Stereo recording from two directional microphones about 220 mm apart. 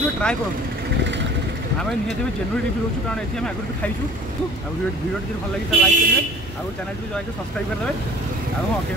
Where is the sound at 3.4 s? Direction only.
5° left (ahead or behind).